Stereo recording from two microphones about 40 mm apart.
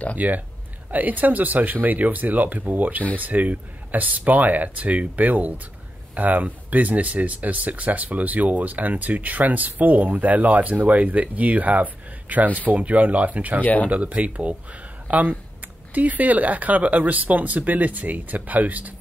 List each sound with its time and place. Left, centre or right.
0.2 s speech: right
13.6 s speech: left
13.8 s speech: right